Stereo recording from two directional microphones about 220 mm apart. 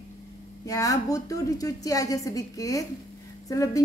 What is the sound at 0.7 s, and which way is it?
A woman's voice, 15° left (ahead or behind).